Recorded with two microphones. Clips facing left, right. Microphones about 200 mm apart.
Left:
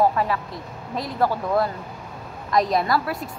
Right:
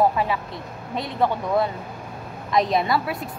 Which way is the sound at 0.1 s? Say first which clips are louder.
Even; 5° right (ahead or behind).